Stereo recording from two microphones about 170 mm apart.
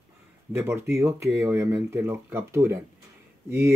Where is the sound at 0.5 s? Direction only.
15° right (ahead or behind).